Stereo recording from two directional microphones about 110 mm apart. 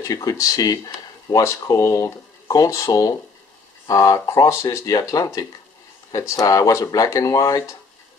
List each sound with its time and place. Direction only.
0.0 s speech: 30° left (ahead or behind)